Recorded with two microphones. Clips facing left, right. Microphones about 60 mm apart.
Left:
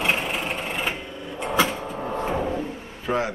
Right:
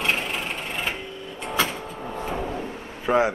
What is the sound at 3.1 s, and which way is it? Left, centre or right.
Speech, centre.